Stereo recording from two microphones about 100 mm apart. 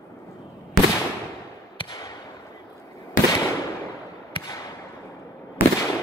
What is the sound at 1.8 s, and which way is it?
Fireworks, 45° left (ahead or behind).